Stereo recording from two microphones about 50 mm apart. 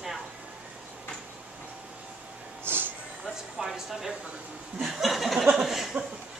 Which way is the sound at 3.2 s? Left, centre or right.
Centre.